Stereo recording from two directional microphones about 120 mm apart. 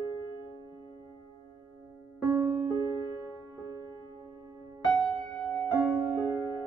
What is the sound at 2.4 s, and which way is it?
Music, 20° right (ahead or behind).